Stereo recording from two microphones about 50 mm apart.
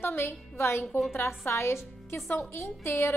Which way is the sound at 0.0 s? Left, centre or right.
Left.